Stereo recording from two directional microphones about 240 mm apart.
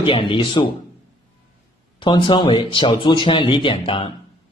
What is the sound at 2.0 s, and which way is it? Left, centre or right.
Speech, centre.